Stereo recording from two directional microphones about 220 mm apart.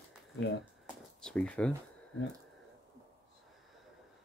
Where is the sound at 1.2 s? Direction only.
5° left (ahead or behind).